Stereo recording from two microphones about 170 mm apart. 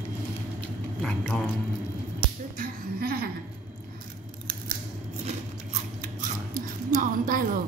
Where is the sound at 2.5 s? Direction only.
60° right (ahead or behind).